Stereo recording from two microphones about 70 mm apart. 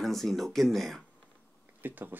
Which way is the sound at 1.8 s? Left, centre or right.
Right.